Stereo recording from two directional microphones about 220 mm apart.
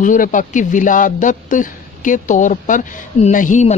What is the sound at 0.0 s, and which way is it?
A man's voice, 35° left (ahead or behind).